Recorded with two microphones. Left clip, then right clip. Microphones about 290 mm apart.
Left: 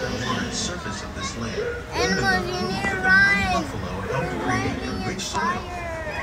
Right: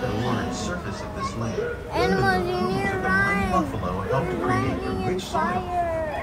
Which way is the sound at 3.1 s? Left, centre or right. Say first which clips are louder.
Left 7 dB; centre.